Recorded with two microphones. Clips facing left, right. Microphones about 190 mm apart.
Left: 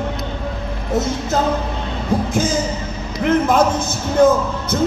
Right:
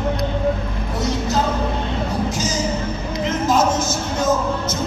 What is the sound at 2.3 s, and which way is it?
Music, 55° left (ahead or behind).